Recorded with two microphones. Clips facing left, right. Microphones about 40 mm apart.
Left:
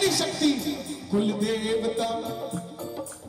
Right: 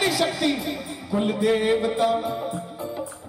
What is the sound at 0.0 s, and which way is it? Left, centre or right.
A man's voice, centre.